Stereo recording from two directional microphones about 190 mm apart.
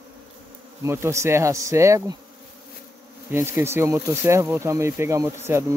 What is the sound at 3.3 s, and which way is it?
Speech, 15° right (ahead or behind).